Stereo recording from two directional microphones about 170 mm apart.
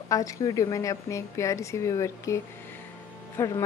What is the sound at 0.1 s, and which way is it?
A woman's voice, 20° left (ahead or behind).